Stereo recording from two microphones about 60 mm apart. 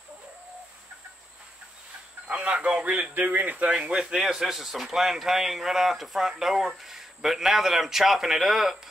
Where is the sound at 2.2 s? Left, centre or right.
Centre.